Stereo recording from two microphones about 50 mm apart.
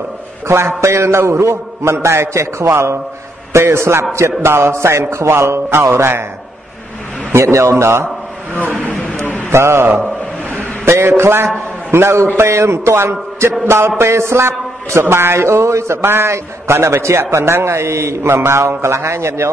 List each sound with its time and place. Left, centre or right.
0.5 s a man's voice: right
2.7 s a man's voice: right
7.3 s a man's voice: right
7.7 s a man's voice: right
9.2 s a sound: left
9.5 s a man's voice: right
10.9 s a man's voice: right
17.3 s a man's voice: right